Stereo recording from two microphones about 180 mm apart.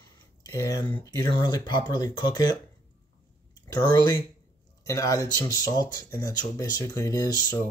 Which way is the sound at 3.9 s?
25° left (ahead or behind).